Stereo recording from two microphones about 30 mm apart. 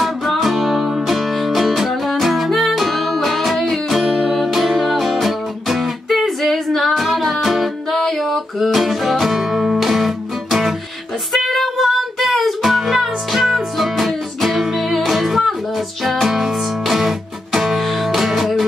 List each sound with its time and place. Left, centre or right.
0.0 s music: centre
8.1 s a sound: centre
8.7 s music: centre
11.3 s female singing: centre
11.9 s music: centre